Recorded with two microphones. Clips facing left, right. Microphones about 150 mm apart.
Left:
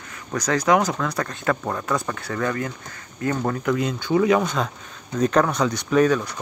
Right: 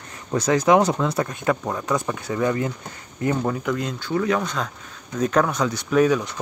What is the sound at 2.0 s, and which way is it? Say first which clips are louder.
Speech: right 2 dB; 15° right (ahead or behind).